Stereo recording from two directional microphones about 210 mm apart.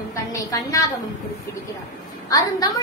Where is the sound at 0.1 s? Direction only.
15° left (ahead or behind).